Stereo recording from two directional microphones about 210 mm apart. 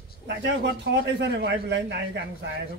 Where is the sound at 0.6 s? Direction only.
55° right (ahead or behind).